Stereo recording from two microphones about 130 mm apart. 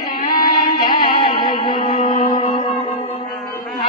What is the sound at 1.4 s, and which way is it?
Music, 35° left (ahead or behind).